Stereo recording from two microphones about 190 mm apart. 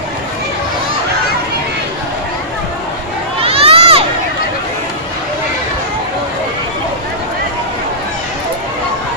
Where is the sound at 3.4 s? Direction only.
30° right (ahead or behind).